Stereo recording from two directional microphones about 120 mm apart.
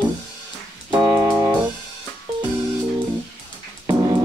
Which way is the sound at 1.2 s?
20° right (ahead or behind).